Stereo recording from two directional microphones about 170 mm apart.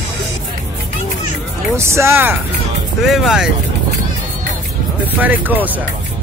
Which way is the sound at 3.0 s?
Centre (ahead or behind).